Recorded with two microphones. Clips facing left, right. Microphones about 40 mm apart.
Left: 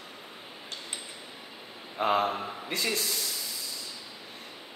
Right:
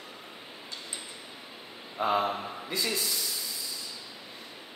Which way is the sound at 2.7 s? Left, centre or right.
Left.